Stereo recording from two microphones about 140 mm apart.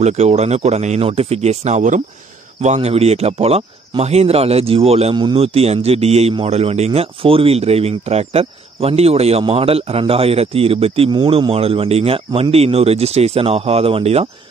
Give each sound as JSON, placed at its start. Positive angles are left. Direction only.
{"t": 0.0, "sound": "speech", "side_deg": -50}
{"t": 5.1, "sound": "speech", "side_deg": -35}